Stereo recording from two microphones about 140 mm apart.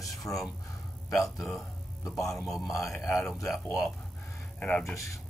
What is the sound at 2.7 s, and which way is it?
Speech, 20° left (ahead or behind).